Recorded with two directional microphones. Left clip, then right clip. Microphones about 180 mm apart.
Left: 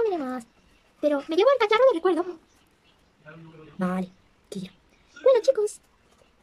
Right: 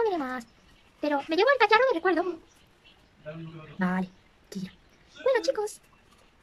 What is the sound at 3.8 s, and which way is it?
Speech, 15° left (ahead or behind).